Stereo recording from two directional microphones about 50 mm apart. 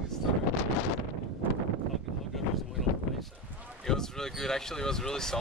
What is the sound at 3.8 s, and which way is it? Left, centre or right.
Speech, centre.